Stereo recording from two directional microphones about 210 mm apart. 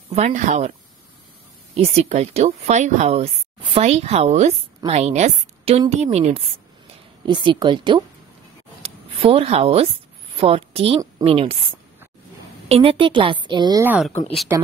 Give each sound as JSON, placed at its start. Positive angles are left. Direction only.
{"t": 0.1, "sound": "speech", "side_deg": -35}
{"t": 1.8, "sound": "a woman's voice", "side_deg": -30}